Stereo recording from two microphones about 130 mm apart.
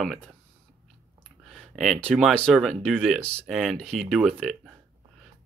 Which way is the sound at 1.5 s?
Centre (ahead or behind).